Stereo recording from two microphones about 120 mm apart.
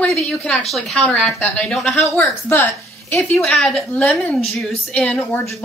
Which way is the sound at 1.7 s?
Centre (ahead or behind).